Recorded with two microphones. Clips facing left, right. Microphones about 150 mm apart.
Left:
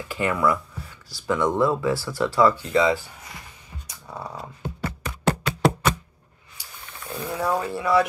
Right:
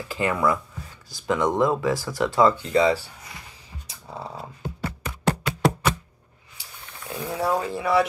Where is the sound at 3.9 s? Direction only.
25° right (ahead or behind).